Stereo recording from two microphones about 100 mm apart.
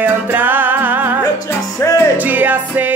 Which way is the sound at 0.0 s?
20° right (ahead or behind).